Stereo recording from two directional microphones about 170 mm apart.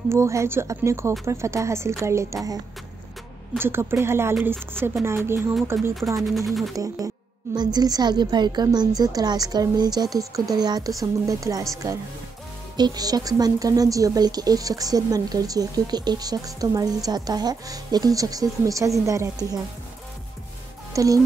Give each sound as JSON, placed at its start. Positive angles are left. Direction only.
{"t": 0.1, "sound": "speech", "side_deg": -15}
{"t": 3.5, "sound": "speech", "side_deg": -15}
{"t": 6.2, "sound": "music", "side_deg": 0}
{"t": 6.7, "sound": "speech", "side_deg": -20}
{"t": 20.9, "sound": "speech", "side_deg": -20}